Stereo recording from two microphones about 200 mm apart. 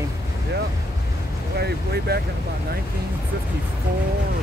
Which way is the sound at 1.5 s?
55° right (ahead or behind).